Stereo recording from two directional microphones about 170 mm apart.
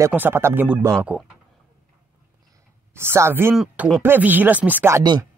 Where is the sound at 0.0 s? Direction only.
10° right (ahead or behind).